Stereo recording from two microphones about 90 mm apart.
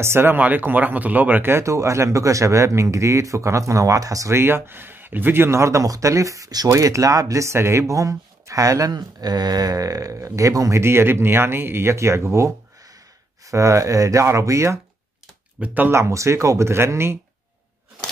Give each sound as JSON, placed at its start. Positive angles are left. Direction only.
{"t": 0.0, "sound": "speech", "side_deg": -25}
{"t": 10.8, "sound": "speech", "side_deg": -25}
{"t": 15.6, "sound": "speech", "side_deg": -20}
{"t": 15.9, "sound": "speech", "side_deg": -35}